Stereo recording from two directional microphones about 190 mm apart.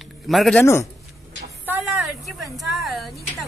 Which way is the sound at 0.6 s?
15° left (ahead or behind).